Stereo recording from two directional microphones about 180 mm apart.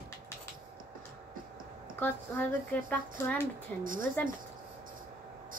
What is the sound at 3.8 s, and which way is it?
Speech, 50° right (ahead or behind).